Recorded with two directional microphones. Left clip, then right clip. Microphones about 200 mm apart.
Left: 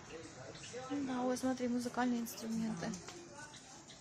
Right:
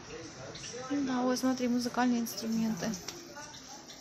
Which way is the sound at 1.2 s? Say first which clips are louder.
Right 5 dB; 5° right (ahead or behind).